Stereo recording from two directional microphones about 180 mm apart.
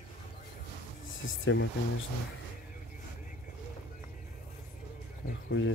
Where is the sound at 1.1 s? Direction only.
90° left.